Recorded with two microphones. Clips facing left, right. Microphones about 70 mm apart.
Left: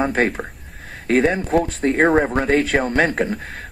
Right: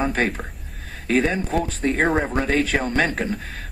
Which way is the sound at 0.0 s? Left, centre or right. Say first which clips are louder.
Left 3 dB; left.